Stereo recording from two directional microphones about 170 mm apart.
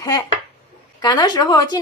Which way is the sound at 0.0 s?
20° left (ahead or behind).